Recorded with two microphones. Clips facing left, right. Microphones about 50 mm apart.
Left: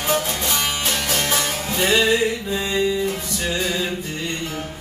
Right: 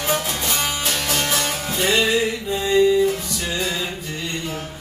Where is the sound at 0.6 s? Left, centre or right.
Left.